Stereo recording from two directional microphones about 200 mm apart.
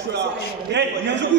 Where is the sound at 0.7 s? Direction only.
60° right (ahead or behind).